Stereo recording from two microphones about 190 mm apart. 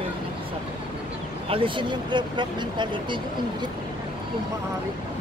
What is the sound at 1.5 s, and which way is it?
Speech, 25° right (ahead or behind).